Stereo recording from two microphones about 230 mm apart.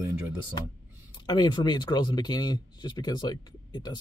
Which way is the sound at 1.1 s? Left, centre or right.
Centre.